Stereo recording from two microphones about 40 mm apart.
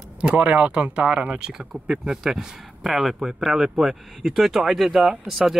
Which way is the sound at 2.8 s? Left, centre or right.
Centre.